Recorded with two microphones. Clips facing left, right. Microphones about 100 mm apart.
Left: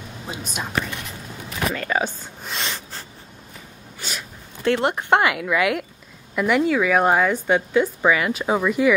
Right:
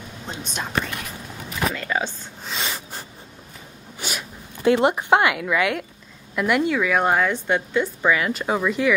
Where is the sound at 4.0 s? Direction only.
10° right (ahead or behind).